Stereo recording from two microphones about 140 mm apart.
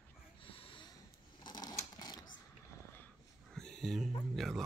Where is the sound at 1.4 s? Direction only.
30° left (ahead or behind).